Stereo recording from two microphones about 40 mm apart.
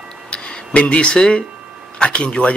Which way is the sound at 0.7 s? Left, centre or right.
Left.